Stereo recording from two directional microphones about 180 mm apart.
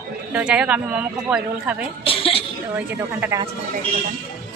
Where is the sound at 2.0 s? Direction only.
30° left (ahead or behind).